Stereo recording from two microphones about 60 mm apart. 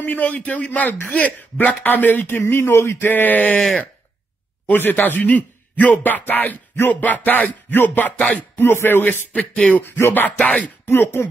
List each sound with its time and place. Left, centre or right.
0.0 s a man's voice: left
3.1 s a man's voice: left
4.6 s a man's voice: left
9.3 s a man's voice: centre
9.8 s a man's voice: left
10.3 s a man's voice: left
10.9 s a man's voice: left